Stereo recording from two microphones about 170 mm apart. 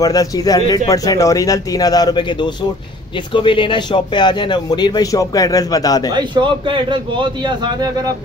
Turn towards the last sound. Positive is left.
turn(degrees=-25)  # may be behind; listen again after turning